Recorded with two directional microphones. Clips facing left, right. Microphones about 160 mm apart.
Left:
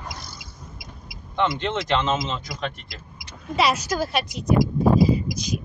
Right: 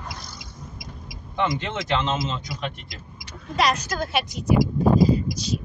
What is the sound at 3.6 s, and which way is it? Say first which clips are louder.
Speech: left 1 dB; 5° left (ahead or behind).